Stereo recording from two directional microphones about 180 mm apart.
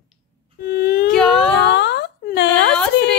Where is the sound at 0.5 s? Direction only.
55° left (ahead or behind).